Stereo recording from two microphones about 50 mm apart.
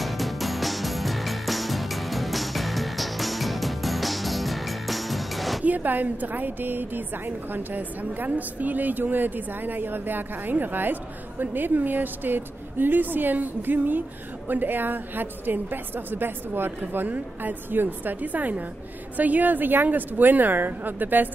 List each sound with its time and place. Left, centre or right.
0.0 s music: centre
5.6 s a woman's voice: right